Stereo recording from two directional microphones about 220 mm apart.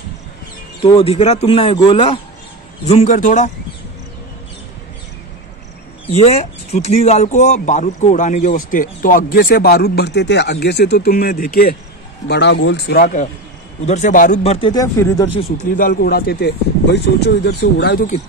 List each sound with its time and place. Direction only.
0.9 s speech: 30° left (ahead or behind)
6.0 s speech: 25° left (ahead or behind)
15.7 s speech: 40° left (ahead or behind)